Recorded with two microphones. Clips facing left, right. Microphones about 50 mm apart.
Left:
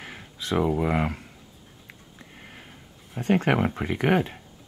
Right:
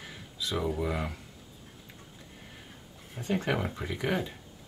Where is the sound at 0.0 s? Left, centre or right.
Left.